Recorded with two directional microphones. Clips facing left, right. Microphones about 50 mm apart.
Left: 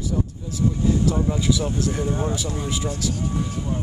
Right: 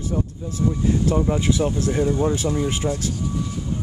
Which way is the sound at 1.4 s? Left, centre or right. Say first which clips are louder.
Right 2 dB; right.